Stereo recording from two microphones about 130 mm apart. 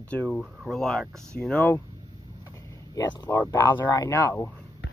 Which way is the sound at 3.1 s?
25° left (ahead or behind).